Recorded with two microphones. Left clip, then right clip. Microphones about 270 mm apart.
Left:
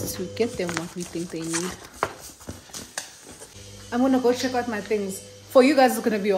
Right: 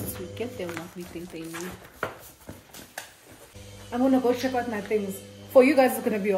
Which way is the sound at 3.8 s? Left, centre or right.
Centre.